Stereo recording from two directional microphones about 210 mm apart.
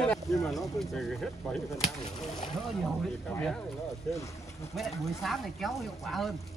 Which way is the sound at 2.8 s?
5° left (ahead or behind).